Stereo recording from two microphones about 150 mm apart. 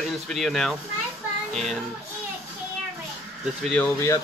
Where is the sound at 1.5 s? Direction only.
Centre (ahead or behind).